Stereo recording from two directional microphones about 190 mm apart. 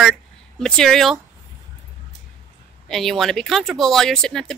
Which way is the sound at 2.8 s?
Centre (ahead or behind).